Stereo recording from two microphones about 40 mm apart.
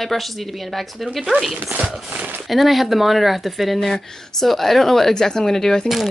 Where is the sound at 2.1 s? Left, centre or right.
Right.